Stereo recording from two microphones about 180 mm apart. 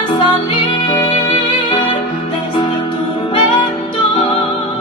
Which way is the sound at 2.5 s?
25° left (ahead or behind).